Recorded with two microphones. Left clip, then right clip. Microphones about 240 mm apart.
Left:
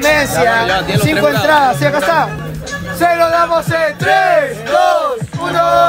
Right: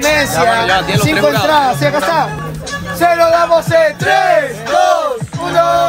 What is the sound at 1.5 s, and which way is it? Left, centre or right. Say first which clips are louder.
Music: left 1 dB; left.